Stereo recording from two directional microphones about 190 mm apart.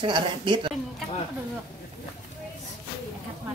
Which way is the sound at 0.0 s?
25° right (ahead or behind).